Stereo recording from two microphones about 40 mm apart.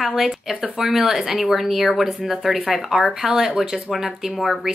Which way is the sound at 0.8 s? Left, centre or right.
Centre.